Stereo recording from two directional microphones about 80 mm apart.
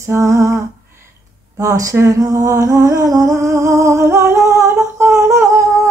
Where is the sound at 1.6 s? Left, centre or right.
Right.